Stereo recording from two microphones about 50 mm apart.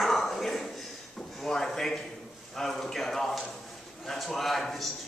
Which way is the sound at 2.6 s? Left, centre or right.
Centre.